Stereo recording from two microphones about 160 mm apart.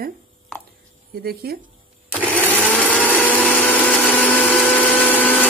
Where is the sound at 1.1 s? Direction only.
75° right (ahead or behind).